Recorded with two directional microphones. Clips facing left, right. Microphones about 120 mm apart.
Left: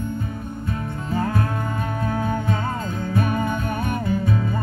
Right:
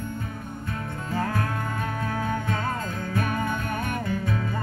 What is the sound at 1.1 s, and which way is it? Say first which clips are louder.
Music: left 4 dB; 20° left (ahead or behind).